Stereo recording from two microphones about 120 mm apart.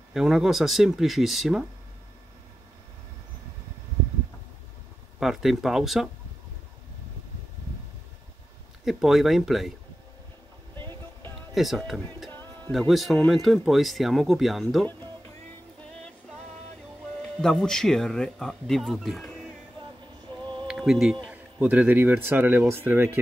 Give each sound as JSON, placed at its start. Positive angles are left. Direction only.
{"t": 0.1, "sound": "speech", "side_deg": -5}
{"t": 5.2, "sound": "speech", "side_deg": 0}
{"t": 8.8, "sound": "speech", "side_deg": 0}
{"t": 11.5, "sound": "speech", "side_deg": 0}
{"t": 12.3, "sound": "a sound", "side_deg": 15}
{"t": 12.7, "sound": "speech", "side_deg": 0}
{"t": 17.4, "sound": "speech", "side_deg": 5}
{"t": 20.6, "sound": "music", "side_deg": 0}
{"t": 21.3, "sound": "speech", "side_deg": -15}